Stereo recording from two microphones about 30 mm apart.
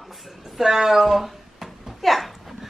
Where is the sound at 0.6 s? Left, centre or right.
Centre.